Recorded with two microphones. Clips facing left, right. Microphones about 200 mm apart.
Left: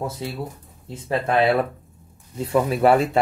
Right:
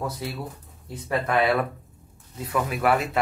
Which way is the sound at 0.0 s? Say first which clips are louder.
Left 3 dB; 25° left (ahead or behind).